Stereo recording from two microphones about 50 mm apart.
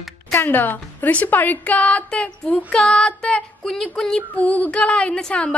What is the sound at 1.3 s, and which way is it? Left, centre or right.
A woman's voice, left.